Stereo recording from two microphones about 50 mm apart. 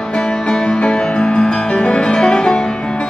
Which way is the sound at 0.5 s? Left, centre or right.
Centre.